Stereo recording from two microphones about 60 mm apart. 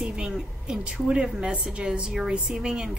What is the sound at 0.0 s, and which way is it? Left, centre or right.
A woman's voice, centre.